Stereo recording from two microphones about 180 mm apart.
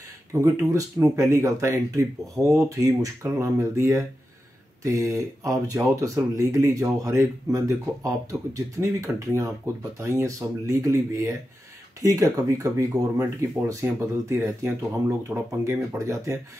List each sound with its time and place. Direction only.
0.3 s speech: 20° right (ahead or behind)